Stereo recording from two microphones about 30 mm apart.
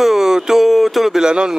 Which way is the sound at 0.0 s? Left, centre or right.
Centre.